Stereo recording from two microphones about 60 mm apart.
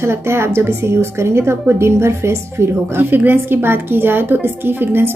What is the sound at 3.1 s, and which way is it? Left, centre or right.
A woman's voice, right.